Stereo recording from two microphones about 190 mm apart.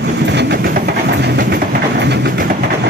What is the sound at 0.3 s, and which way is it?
Train, 60° right (ahead or behind).